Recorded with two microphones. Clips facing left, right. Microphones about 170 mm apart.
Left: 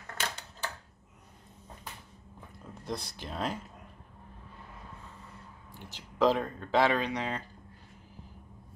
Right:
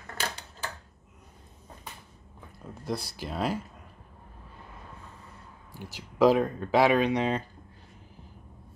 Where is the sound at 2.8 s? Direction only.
5° right (ahead or behind).